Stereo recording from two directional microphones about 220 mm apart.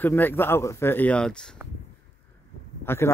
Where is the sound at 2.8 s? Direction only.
10° left (ahead or behind).